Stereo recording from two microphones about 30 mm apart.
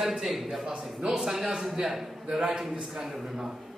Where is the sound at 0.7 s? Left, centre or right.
Centre.